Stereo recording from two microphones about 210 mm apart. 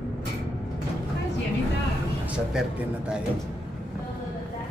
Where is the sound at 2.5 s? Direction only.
5° right (ahead or behind).